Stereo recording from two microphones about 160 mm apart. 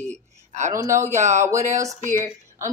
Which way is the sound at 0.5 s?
50° right (ahead or behind).